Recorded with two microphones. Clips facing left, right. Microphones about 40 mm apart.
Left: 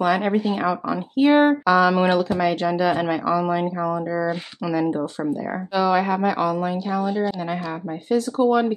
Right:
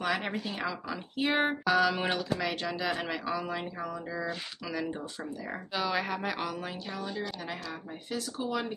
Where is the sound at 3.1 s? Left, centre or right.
Centre; by 4.4 s left.